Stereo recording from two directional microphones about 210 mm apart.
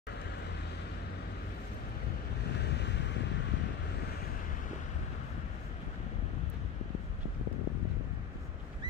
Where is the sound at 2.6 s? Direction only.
55° left (ahead or behind).